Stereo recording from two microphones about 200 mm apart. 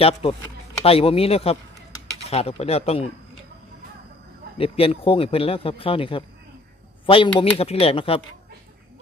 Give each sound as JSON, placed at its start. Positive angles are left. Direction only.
{"t": 0.0, "sound": "speech", "side_deg": 30}
{"t": 4.6, "sound": "speech", "side_deg": 30}